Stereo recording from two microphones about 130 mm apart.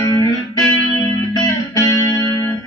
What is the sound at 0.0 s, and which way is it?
Music, 30° left (ahead or behind).